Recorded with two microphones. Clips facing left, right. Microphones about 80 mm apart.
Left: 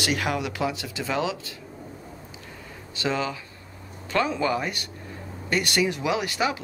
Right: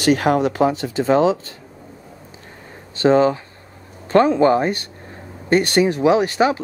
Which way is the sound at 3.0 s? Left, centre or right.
Right.